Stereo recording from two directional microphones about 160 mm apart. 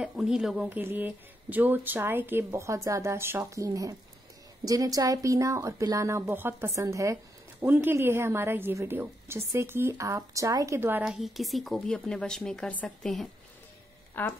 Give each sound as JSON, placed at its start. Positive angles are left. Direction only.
{"t": 0.0, "sound": "a woman's voice", "side_deg": -5}
{"t": 14.2, "sound": "speech", "side_deg": 10}